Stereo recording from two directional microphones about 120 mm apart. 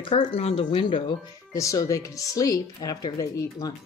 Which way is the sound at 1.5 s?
25° left (ahead or behind).